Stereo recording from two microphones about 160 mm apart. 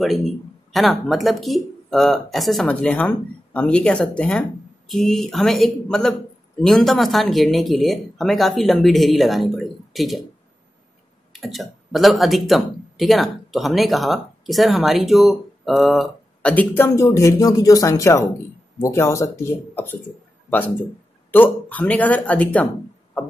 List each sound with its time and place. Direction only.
0.0 s speech: centre (ahead or behind)
11.3 s speech: centre (ahead or behind)